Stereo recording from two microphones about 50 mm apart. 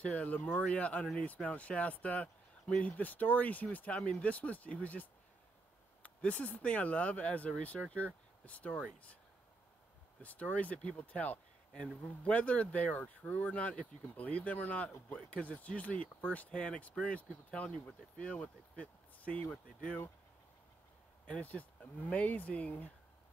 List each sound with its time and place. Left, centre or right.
0.0 s speech: left
6.0 s speech: left
10.2 s speech: left
21.3 s speech: left